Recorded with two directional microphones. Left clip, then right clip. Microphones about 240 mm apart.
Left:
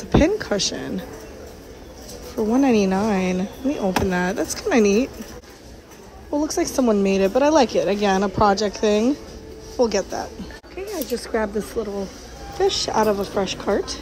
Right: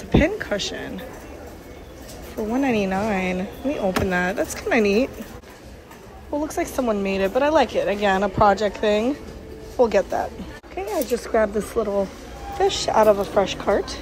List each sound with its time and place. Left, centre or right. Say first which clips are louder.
0.2 s speech: left 2 dB; centre
2.5 s speech: left 3 dB; centre
6.3 s speech: left 3 dB; centre
10.8 s a sound: right 3 dB; centre
11.1 s speech: right 2 dB; centre
12.5 s speech: right 1 dB; centre